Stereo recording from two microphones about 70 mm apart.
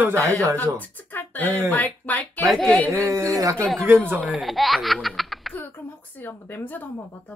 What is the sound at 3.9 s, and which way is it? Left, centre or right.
Speech, right.